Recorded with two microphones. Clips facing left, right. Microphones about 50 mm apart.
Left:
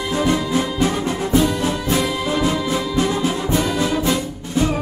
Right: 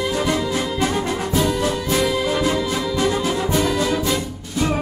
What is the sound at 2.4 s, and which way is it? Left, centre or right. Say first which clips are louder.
Music: left 1 dB; left.